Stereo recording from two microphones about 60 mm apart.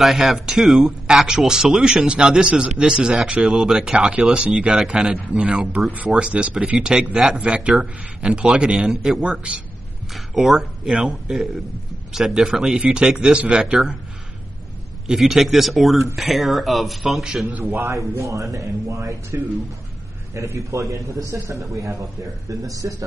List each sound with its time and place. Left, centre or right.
0.0 s a man's voice: centre
15.0 s speech: centre
17.5 s a man's voice: right
17.7 s a man's voice: right
22.5 s a man's voice: right